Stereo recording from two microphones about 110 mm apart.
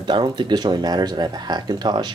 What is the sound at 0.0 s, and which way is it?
Speech, 45° right (ahead or behind).